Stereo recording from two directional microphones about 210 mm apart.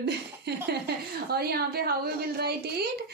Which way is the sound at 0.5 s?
50° right (ahead or behind).